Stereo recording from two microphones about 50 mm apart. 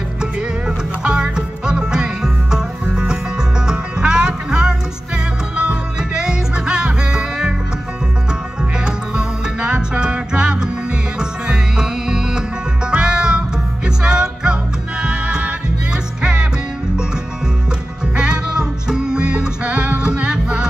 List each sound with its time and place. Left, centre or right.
0.2 s music: centre
18.1 s music: centre